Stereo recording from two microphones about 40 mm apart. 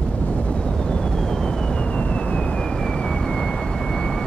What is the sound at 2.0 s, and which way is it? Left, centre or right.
Vehicle, left.